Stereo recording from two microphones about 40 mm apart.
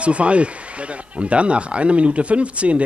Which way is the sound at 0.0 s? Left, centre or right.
Right.